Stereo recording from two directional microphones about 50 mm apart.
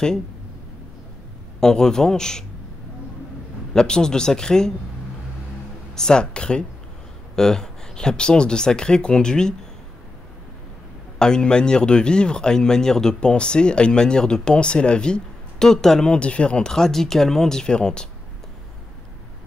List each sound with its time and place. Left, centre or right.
1.6 s speech: centre
3.7 s speech: centre
5.9 s speech: centre
11.1 s speech: centre
16.1 s speech: left
16.7 s speech: centre